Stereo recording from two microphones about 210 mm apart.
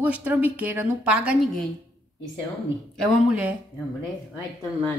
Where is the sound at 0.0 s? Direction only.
10° right (ahead or behind).